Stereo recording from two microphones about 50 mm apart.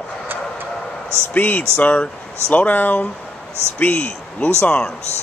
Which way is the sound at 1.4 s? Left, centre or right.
Left.